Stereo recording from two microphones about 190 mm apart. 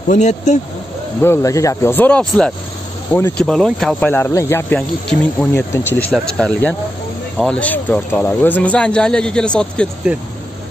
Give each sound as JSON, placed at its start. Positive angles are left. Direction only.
{"t": 0.1, "sound": "speech", "side_deg": 40}
{"t": 1.2, "sound": "speech", "side_deg": 15}
{"t": 10.1, "sound": "speech", "side_deg": -5}